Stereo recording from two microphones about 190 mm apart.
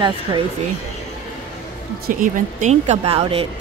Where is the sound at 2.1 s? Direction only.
40° right (ahead or behind).